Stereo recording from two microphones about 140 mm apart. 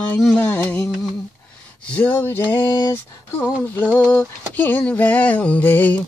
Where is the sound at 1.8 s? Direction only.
10° left (ahead or behind).